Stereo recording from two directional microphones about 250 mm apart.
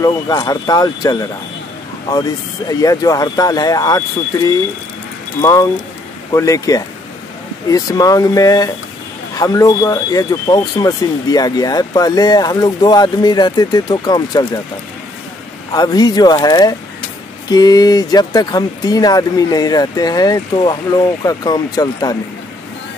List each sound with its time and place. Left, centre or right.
0.0 s speech: centre
5.4 s speech: centre
15.7 s speech: centre